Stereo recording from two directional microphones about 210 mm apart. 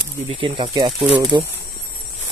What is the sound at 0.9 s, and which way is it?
Speech, 5° right (ahead or behind).